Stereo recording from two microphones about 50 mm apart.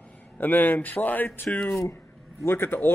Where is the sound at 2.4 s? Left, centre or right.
Left.